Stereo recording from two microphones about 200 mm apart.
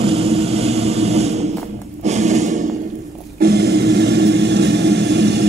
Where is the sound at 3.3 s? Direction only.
55° right (ahead or behind).